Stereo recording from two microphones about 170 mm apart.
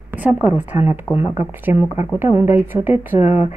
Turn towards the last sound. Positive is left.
turn(degrees=40)  # may be behind; listen again after turning